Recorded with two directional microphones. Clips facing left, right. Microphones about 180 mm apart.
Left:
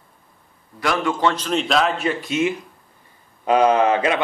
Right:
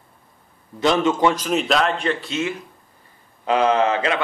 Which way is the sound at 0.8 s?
20° right (ahead or behind).